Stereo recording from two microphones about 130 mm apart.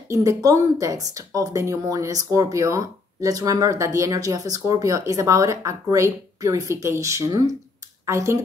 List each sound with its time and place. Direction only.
0.1 s a woman's voice: 25° right (ahead or behind)